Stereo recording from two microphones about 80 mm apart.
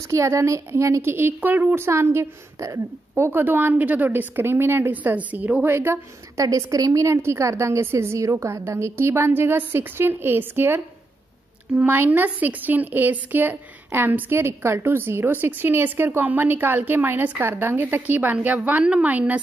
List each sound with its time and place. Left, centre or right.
0.1 s speech: right
4.9 s speech: centre
6.4 s a woman's voice: right; by 19.4 s centre